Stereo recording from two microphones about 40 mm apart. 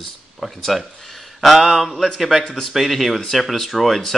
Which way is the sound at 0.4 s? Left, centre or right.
Centre.